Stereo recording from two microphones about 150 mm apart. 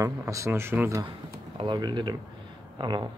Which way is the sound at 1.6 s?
30° right (ahead or behind).